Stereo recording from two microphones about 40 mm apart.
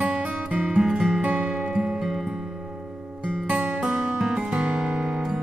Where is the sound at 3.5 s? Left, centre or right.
Centre.